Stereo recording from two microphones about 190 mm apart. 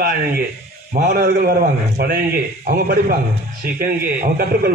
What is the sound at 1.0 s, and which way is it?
A man's voice, 50° right (ahead or behind).